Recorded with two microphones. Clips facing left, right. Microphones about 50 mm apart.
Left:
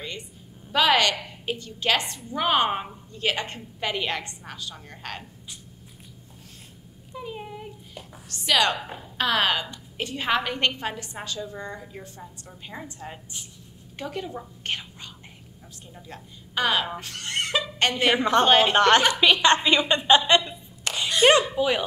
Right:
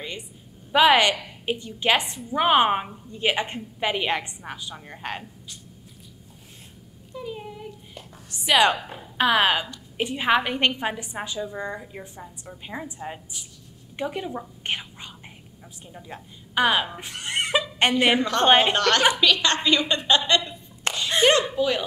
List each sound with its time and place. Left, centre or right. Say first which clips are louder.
0.7 s a woman's voice: right 3 dB; centre
7.2 s a sound: right 1 dB; centre
8.3 s a woman's voice: right 3 dB; centre
8.7 s a woman's voice: even; centre
9.2 s a woman's voice: right 3 dB; centre
18.8 s a woman's voice: left 2 dB; left
20.9 s a sound: right 2 dB; right
21.3 s speech: left 3 dB; centre